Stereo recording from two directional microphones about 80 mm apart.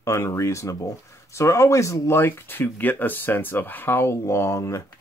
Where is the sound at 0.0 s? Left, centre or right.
Left.